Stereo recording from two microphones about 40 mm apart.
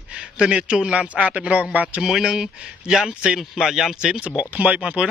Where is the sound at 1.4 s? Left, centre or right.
Right.